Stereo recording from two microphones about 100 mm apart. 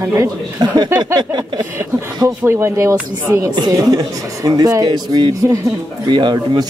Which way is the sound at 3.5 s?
45° right (ahead or behind).